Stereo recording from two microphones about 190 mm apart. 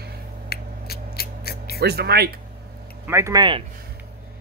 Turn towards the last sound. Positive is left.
turn(degrees=-25)  # may be behind; listen again after turning